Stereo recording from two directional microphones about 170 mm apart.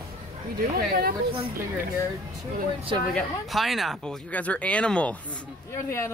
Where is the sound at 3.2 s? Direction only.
Centre (ahead or behind).